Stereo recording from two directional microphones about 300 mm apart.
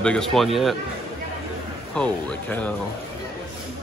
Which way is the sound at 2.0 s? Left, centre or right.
Centre.